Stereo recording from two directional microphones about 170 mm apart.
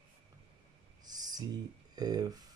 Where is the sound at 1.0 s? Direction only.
25° right (ahead or behind).